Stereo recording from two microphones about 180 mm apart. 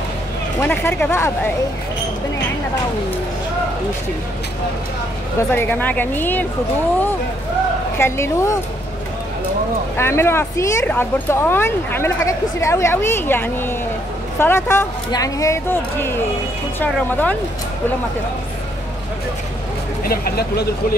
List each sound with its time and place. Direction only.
0.6 s speech: 10° left (ahead or behind)
5.5 s speech: 10° left (ahead or behind)
8.0 s speech: 15° left (ahead or behind)
9.9 s speech: 15° left (ahead or behind)
20.0 s speech: 55° left (ahead or behind)